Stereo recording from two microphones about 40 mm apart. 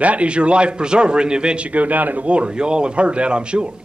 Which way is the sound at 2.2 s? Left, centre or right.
Right.